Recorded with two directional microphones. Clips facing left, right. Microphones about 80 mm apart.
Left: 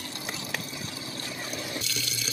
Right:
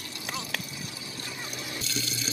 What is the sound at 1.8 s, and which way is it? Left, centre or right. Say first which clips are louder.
Water: right 1 dB; right.